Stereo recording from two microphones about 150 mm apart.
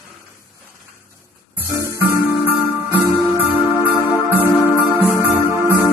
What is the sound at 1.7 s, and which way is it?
Music, 20° right (ahead or behind).